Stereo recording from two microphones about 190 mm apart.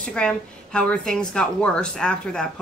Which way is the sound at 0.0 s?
5° left (ahead or behind).